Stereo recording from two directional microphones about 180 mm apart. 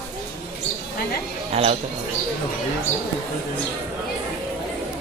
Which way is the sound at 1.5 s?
35° right (ahead or behind).